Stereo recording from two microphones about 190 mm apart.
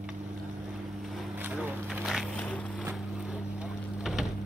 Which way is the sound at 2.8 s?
5° right (ahead or behind).